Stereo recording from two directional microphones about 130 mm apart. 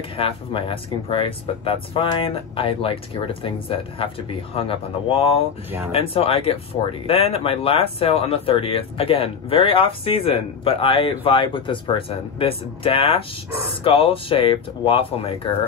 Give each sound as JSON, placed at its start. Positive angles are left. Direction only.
{"t": 0.2, "sound": "speech", "side_deg": 45}